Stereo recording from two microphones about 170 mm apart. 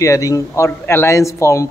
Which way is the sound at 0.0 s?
20° left (ahead or behind).